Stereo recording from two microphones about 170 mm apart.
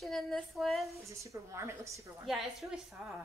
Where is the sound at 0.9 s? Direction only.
15° right (ahead or behind).